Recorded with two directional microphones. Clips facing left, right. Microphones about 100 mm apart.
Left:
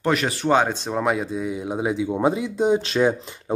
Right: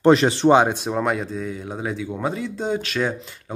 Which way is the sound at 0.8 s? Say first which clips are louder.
Even; centre (ahead or behind).